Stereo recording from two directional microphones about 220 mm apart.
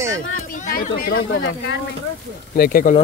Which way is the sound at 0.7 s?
40° left (ahead or behind).